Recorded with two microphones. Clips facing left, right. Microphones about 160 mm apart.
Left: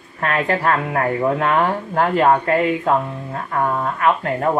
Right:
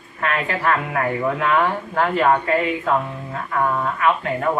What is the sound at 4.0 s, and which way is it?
Speech, 40° left (ahead or behind).